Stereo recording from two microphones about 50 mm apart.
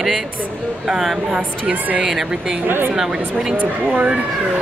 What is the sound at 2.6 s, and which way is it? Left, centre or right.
Speech, right.